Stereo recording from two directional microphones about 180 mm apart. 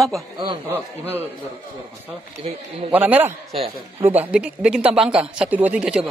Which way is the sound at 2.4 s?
30° right (ahead or behind).